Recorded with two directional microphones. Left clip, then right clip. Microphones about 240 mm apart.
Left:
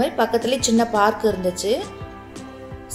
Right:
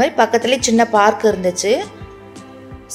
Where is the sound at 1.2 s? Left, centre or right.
Right.